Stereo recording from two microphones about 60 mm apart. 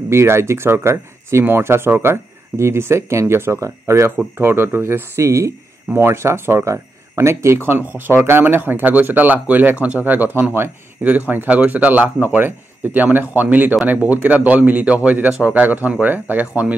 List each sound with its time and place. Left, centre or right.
0.1 s speech: right
4.4 s speech: right
5.9 s speech: right
10.5 s speech: right
11.1 s a man's voice: right